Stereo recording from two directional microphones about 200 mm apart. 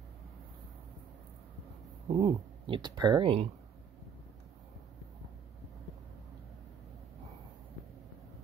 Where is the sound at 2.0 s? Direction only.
25° right (ahead or behind).